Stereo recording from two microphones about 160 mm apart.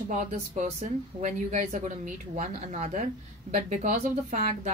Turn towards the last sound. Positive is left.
turn(degrees=-50)  # may be behind; listen again after turning